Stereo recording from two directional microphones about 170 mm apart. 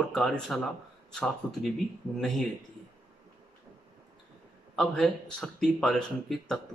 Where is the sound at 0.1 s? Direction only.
5° left (ahead or behind).